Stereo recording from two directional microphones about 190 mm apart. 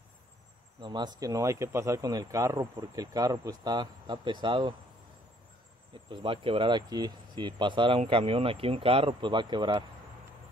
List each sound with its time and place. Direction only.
0.7 s speech: 25° right (ahead or behind)
6.0 s speech: 25° right (ahead or behind)